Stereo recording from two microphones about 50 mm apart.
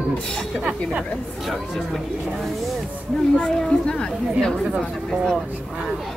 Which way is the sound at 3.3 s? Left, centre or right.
Centre.